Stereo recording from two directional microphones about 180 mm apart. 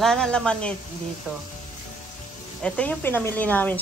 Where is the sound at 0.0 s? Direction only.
5° left (ahead or behind).